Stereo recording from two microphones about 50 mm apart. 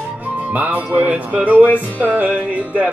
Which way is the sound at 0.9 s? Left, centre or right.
Right.